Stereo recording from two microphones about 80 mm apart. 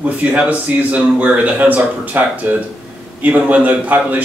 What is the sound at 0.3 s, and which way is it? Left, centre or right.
A man's voice, centre.